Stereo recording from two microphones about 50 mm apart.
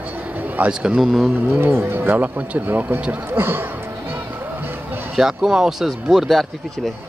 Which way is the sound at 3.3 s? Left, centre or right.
Right.